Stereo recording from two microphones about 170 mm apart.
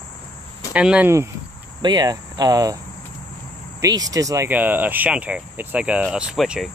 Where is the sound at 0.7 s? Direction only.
5° right (ahead or behind).